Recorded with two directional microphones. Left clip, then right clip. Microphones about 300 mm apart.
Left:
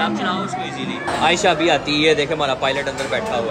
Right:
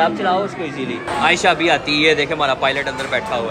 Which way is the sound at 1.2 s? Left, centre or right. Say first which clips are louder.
Right 1 dB; centre.